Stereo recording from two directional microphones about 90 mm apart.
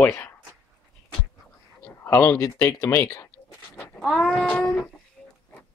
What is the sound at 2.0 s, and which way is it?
Speech, 30° left (ahead or behind).